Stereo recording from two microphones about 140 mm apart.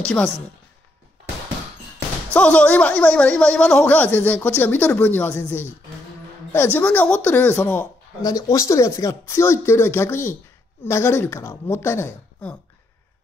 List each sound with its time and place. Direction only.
2.3 s speech: 10° left (ahead or behind)
8.2 s speech: 25° left (ahead or behind)